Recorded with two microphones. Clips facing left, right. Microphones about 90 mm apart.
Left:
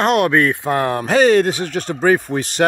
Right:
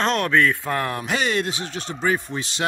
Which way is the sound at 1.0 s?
40° left (ahead or behind).